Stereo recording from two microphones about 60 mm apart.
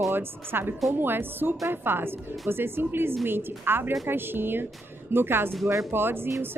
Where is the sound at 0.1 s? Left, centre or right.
Right.